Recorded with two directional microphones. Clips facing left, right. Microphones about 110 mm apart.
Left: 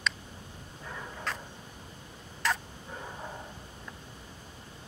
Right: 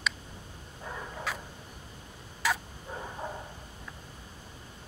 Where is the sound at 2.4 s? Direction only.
5° right (ahead or behind).